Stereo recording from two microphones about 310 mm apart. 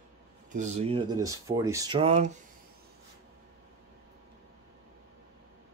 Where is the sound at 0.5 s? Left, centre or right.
Right.